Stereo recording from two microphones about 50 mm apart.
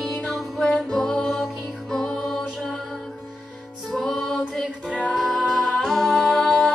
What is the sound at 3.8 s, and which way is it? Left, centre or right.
Music, centre.